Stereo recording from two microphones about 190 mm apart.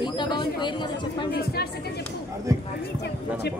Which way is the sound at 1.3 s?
55° left (ahead or behind).